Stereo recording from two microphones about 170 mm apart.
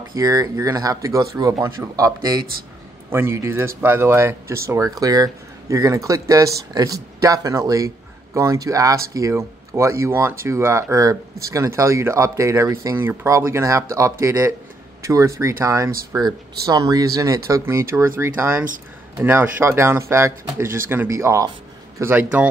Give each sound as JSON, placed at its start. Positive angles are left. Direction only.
{"t": 0.2, "sound": "speech", "side_deg": -20}